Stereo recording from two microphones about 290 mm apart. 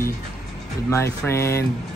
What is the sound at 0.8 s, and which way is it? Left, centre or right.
Speech, centre.